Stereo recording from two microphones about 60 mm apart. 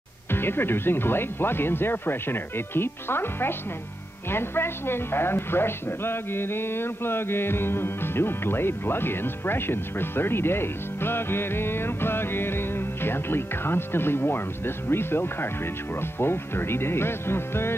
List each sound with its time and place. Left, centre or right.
0.3 s a woman's voice: left